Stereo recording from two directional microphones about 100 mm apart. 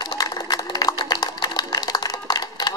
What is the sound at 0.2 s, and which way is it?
Music, 40° left (ahead or behind).